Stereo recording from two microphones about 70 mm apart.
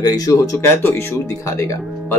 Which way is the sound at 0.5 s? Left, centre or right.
Left.